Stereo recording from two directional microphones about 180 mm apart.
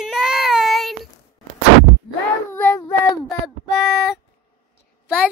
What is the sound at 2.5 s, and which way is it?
Child singing, 15° left (ahead or behind).